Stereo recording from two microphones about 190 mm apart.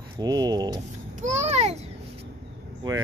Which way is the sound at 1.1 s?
40° right (ahead or behind).